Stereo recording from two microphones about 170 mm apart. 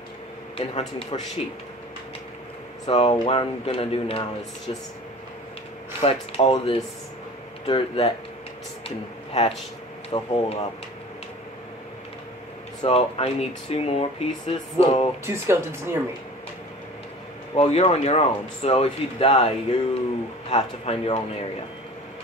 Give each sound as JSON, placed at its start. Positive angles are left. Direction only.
{"t": 0.6, "sound": "speech", "side_deg": 35}
{"t": 2.9, "sound": "speech", "side_deg": 35}
{"t": 5.9, "sound": "speech", "side_deg": 35}
{"t": 8.8, "sound": "a sound", "side_deg": 35}
{"t": 10.1, "sound": "speech", "side_deg": 35}
{"t": 12.8, "sound": "speech", "side_deg": 35}
{"t": 15.2, "sound": "speech", "side_deg": -15}
{"t": 17.6, "sound": "speech", "side_deg": 40}